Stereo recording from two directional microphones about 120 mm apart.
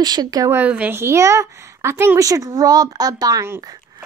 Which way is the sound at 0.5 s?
15° right (ahead or behind).